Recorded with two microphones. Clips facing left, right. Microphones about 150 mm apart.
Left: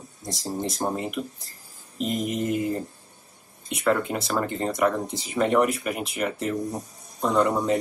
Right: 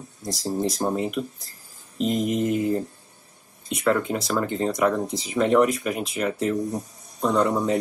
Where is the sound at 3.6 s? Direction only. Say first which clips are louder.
Right 1 dB; centre (ahead or behind).